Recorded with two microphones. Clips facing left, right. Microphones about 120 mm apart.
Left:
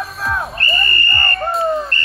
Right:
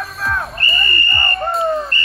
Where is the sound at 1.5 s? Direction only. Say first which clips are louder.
Even; centre (ahead or behind).